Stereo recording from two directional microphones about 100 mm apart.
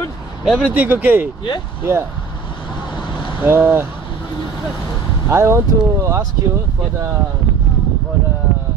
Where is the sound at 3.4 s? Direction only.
25° right (ahead or behind).